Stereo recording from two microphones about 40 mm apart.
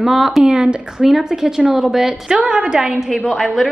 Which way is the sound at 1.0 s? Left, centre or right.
Centre.